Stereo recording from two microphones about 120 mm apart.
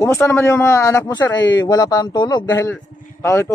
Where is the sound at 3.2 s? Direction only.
20° left (ahead or behind).